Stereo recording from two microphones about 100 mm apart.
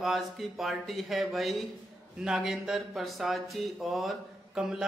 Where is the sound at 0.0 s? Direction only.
Centre (ahead or behind).